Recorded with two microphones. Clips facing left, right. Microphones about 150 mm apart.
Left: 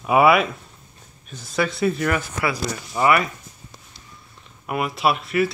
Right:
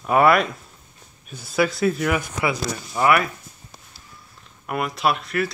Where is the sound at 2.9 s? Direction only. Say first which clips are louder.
Even; centre (ahead or behind).